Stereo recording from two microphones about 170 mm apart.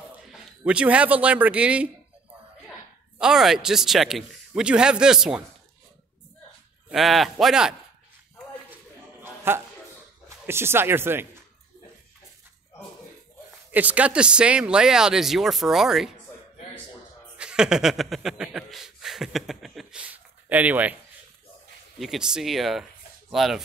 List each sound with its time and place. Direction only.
0.3 s a man's voice: centre (ahead or behind)
3.2 s speech: 5° right (ahead or behind)
6.9 s speech: centre (ahead or behind)
9.2 s a sound: 15° right (ahead or behind)
10.4 s speech: 15° right (ahead or behind)
13.7 s speech: 10° right (ahead or behind)
17.4 s speech: 5° right (ahead or behind)